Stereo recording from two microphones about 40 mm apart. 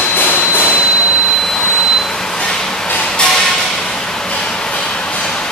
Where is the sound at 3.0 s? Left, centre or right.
Left.